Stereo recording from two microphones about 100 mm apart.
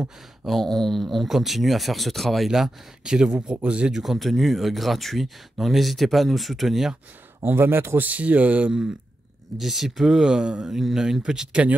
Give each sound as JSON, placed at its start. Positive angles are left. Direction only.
{"t": 0.0, "sound": "speech", "side_deg": 0}
{"t": 7.4, "sound": "a man's voice", "side_deg": -20}